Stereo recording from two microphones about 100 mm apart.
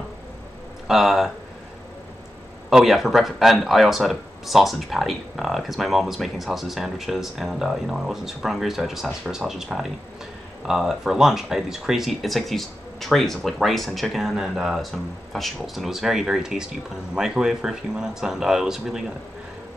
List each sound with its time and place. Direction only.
0.8 s speech: 5° right (ahead or behind)
2.7 s speech: centre (ahead or behind)